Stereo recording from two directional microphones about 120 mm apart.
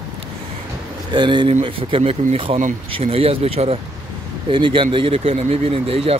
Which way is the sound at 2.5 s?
70° right (ahead or behind).